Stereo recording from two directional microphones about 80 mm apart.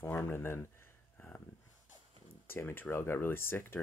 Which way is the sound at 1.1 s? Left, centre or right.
Centre.